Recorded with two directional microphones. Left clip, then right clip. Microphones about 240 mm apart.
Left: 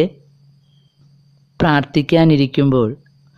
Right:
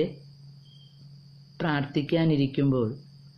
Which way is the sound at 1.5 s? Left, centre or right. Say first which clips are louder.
Left 13 dB; left.